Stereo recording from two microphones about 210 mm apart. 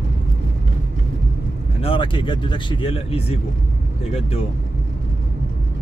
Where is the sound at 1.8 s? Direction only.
25° left (ahead or behind).